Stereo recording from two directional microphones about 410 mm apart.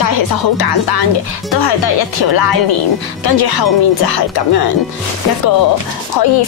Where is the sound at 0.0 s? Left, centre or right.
Left.